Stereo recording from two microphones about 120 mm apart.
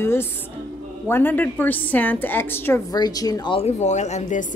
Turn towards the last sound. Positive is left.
turn(degrees=80)